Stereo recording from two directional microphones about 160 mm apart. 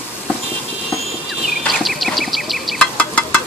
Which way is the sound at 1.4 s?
Centre (ahead or behind).